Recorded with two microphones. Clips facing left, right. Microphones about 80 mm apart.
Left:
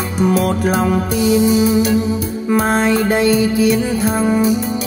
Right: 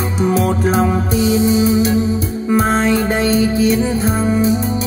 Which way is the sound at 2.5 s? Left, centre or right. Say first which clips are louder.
Even; centre.